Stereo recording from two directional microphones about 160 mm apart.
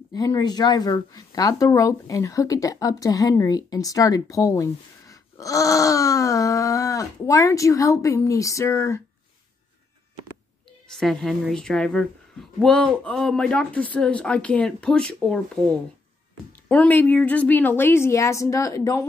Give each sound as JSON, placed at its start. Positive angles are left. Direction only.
{"t": 0.1, "sound": "speech", "side_deg": 25}
{"t": 11.0, "sound": "a woman's voice", "side_deg": 0}